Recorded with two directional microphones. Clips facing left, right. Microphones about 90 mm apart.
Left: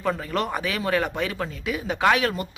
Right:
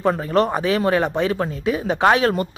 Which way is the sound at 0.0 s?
35° right (ahead or behind).